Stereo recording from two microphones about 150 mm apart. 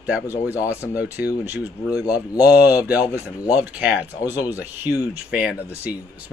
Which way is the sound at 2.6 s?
10° right (ahead or behind).